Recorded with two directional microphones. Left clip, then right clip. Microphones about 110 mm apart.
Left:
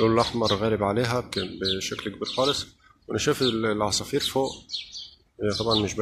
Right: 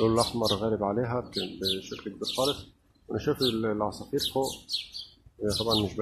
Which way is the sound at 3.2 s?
15° left (ahead or behind).